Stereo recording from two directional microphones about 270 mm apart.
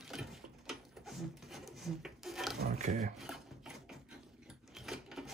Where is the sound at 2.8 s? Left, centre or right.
Right.